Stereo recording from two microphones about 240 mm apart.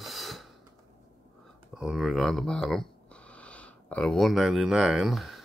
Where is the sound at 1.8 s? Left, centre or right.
Centre.